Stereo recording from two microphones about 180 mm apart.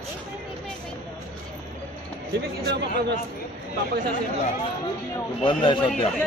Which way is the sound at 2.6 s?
65° right (ahead or behind).